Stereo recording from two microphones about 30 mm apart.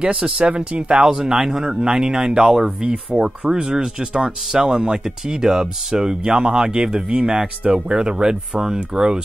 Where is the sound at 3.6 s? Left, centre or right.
Right.